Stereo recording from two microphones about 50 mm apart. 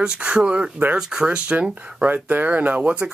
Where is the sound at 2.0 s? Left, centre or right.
Right.